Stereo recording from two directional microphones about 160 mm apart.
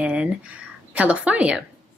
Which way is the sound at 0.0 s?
5° right (ahead or behind).